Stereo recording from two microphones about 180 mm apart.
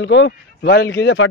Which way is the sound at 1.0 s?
75° left (ahead or behind).